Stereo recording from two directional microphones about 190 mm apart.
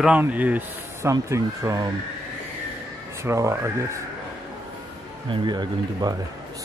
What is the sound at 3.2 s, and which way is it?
Speech, 15° right (ahead or behind).